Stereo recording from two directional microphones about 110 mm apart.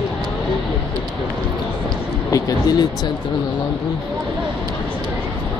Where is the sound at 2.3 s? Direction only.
30° left (ahead or behind).